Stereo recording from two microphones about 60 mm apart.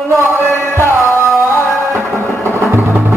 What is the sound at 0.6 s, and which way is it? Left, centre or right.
Music, right.